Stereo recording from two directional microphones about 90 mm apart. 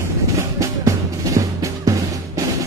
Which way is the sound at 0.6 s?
35° right (ahead or behind).